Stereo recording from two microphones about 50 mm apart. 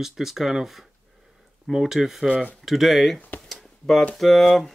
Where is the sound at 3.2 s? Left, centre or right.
Left.